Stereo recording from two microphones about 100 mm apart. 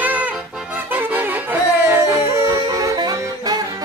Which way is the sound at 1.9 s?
30° right (ahead or behind).